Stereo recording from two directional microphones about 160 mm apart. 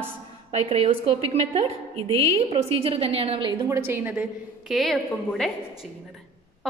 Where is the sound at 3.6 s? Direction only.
15° right (ahead or behind).